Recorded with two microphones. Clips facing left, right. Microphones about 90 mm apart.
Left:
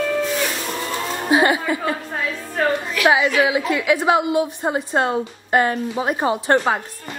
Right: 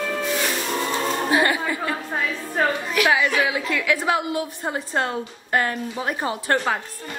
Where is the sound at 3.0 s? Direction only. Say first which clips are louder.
Left 6 dB; 20° left (ahead or behind).